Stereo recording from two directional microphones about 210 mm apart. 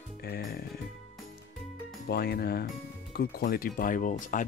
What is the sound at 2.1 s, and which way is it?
Speech, 50° left (ahead or behind).